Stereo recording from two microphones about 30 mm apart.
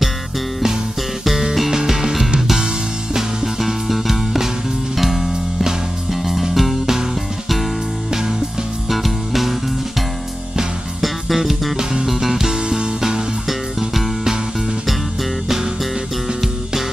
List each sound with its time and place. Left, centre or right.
1.2 s music: centre
1.7 s music: centre
6.0 s music: centre
8.1 s music: centre
8.8 s music: centre
11.0 s music: centre
11.7 s music: right
12.1 s music: centre
12.6 s music: right
13.5 s music: centre